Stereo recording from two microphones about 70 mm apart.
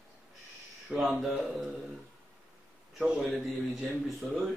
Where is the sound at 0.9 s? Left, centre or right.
Centre.